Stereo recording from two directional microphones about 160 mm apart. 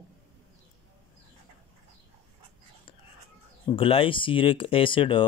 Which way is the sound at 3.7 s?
35° left (ahead or behind).